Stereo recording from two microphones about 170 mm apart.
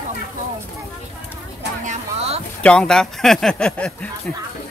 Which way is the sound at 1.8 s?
40° right (ahead or behind).